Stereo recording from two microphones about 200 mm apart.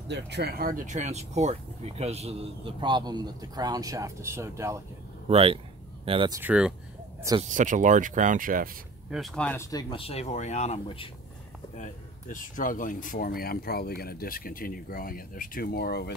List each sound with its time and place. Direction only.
0.1 s speech: 55° right (ahead or behind); by 4.8 s 15° right (ahead or behind)
5.3 s speech: 30° right (ahead or behind)
6.4 s speech: 5° right (ahead or behind)
7.5 s speech: 40° right (ahead or behind)
9.1 s speech: centre (ahead or behind)
9.7 s speech: 25° left (ahead or behind); by 16.1 s 50° left (ahead or behind)